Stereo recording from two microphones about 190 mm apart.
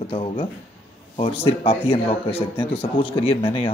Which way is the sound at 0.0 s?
30° left (ahead or behind).